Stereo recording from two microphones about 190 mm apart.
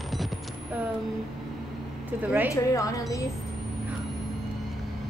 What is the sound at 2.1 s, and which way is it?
Speech, 10° right (ahead or behind).